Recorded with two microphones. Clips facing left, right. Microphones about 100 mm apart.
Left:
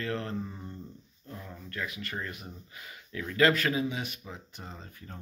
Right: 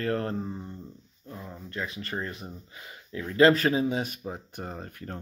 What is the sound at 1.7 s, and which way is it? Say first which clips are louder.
Speech: right 3 dB; 30° right (ahead or behind).